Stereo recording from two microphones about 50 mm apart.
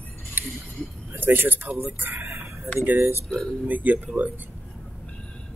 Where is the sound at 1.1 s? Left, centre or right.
Right.